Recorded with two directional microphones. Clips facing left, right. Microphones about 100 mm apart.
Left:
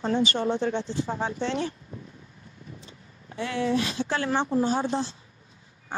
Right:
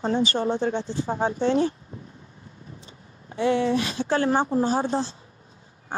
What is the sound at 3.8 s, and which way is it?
A woman's voice, 40° right (ahead or behind).